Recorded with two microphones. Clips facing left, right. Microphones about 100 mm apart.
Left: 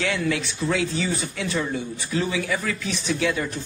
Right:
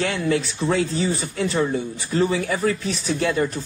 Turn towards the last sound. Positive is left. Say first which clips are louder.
# right 2 dB
turn(degrees=-40)  # may be behind; listen again after turning